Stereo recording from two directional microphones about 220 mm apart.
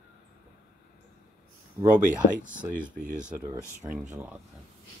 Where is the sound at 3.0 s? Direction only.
40° right (ahead or behind).